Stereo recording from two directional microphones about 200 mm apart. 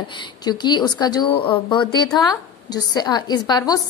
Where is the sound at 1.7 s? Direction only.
25° left (ahead or behind).